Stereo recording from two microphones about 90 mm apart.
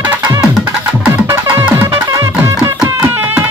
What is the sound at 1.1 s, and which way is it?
Music, 25° right (ahead or behind).